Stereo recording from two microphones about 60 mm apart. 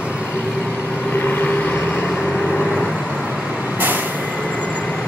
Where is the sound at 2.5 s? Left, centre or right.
Centre.